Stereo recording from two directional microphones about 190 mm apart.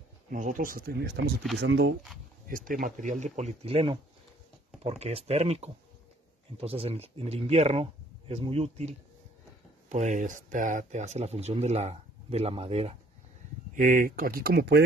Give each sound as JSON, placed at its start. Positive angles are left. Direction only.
{"t": 0.3, "sound": "speech", "side_deg": -45}
{"t": 2.4, "sound": "speech", "side_deg": -45}
{"t": 3.6, "sound": "speech", "side_deg": -30}
{"t": 13.7, "sound": "speech", "side_deg": -45}